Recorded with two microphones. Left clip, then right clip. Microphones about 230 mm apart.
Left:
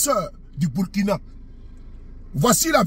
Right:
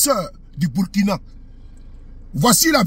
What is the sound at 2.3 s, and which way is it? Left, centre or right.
Speech, centre.